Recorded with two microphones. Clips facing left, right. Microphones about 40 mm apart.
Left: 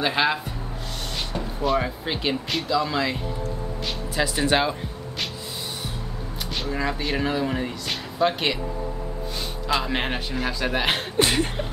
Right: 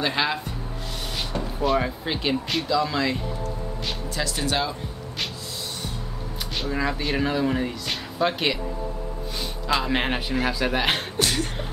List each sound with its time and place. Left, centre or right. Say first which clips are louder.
0.0 s speech: left 2 dB; centre
4.5 s speech: left 4 dB; left
6.5 s speech: right 1 dB; centre
9.7 s speech: right 1 dB; centre
11.1 s a sound: left 3 dB; left